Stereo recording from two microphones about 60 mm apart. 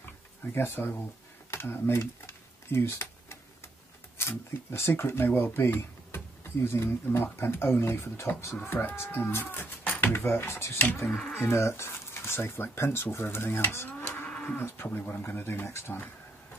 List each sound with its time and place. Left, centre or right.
0.4 s speech: left
1.5 s a sound: left
4.2 s speech: left
11.1 s speech: centre
11.4 s speech: left
14.2 s moo: centre
15.0 s speech: left